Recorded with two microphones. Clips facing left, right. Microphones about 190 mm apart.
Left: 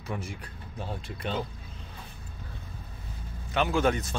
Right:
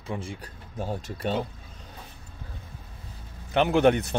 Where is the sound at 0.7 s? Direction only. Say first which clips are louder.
Right 5 dB; 40° right (ahead or behind).